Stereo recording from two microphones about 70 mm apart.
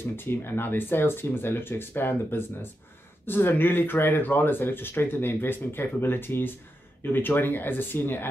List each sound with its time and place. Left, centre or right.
0.0 s speech: left